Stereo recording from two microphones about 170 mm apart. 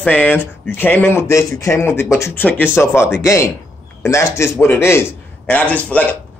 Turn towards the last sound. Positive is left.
turn(degrees=10)  # may be behind; listen again after turning